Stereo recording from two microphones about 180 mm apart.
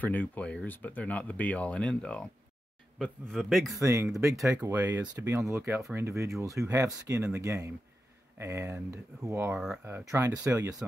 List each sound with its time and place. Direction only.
0.0 s a man's voice: 10° left (ahead or behind)
3.8 s speech: 15° right (ahead or behind)